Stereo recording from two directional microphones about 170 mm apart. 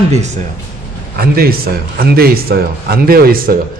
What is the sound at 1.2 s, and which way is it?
A man's voice, 65° right (ahead or behind).